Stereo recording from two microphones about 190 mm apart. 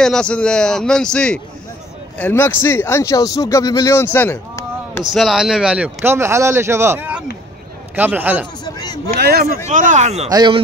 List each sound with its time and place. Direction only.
0.0 s a man's voice: 5° left (ahead or behind)
5.1 s speech: centre (ahead or behind)
8.6 s a sound: 20° left (ahead or behind)
9.1 s speech: 55° right (ahead or behind)
9.7 s speech: 40° right (ahead or behind)
10.3 s a man's voice: 25° right (ahead or behind)